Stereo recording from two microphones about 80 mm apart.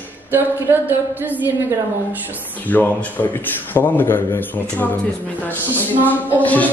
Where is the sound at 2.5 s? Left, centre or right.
Left.